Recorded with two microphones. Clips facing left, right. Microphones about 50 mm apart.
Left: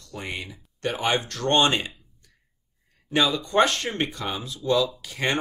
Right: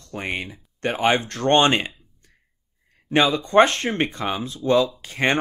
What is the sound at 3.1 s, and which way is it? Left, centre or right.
Speech, right.